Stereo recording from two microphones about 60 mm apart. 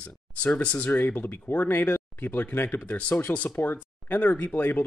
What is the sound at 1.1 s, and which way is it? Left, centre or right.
Speech, left.